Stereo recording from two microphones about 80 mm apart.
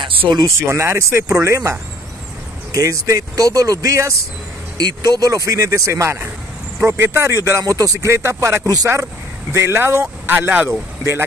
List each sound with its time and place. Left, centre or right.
0.0 s speech: right
0.6 s speech: right
4.7 s speech: right